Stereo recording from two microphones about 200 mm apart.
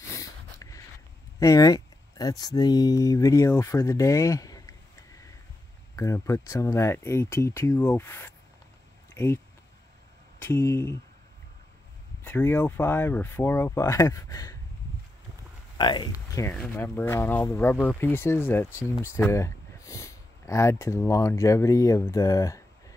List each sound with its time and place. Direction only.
0.1 s snort: 15° left (ahead or behind)
1.4 s speech: 15° left (ahead or behind)
10.4 s speech: 15° left (ahead or behind)
12.2 s speech: 10° left (ahead or behind)
15.8 s speech: 20° left (ahead or behind)